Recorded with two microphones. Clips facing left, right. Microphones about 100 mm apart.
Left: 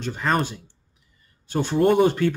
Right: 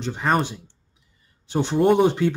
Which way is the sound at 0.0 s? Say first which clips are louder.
Right 1 dB; 20° right (ahead or behind).